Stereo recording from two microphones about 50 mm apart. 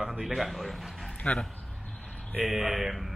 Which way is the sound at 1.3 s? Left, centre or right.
Left.